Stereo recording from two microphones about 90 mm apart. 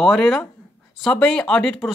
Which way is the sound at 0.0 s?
5° left (ahead or behind).